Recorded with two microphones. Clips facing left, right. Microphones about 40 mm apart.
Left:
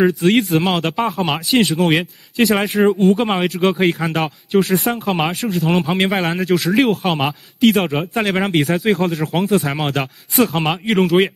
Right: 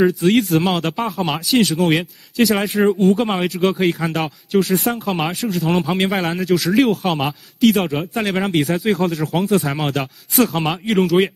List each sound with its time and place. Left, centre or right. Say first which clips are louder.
0.0 s speech: left 1 dB; centre
5.0 s speech: left 2 dB; centre
5.4 s speech: left 1 dB; centre